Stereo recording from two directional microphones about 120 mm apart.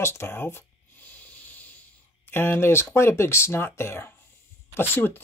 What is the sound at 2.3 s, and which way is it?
Speech, 20° left (ahead or behind).